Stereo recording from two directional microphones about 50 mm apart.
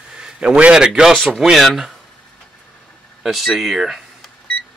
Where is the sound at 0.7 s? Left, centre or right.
Centre.